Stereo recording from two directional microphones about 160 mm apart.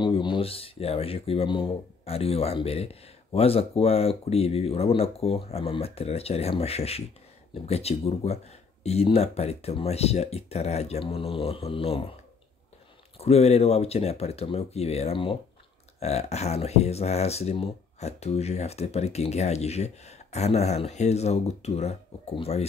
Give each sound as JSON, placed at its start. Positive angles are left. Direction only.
{"t": 0.0, "sound": "speech", "side_deg": 30}
{"t": 13.2, "sound": "speech", "side_deg": 40}